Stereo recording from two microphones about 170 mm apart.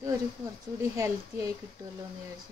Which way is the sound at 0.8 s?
20° right (ahead or behind).